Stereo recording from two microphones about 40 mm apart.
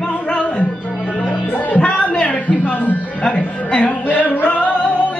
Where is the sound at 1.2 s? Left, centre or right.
Left.